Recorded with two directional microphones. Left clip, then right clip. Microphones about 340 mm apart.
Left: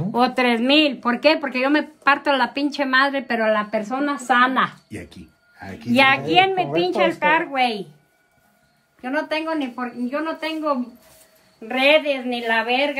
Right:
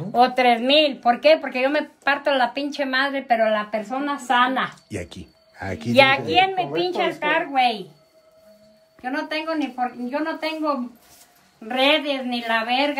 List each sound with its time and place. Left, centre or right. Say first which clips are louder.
0.1 s a woman's voice: right 2 dB; centre
4.8 s speech: right 4 dB; centre
5.9 s a woman's voice: even; centre
9.0 s a woman's voice: left 2 dB; centre